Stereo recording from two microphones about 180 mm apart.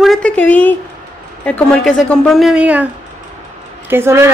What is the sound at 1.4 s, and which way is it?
A woman's voice, 5° left (ahead or behind).